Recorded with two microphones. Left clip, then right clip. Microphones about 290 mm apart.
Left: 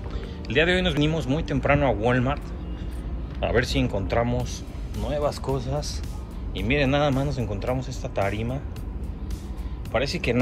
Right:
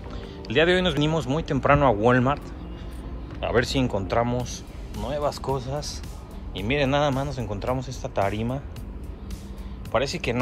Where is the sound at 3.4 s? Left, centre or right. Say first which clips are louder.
Right 1 dB; centre.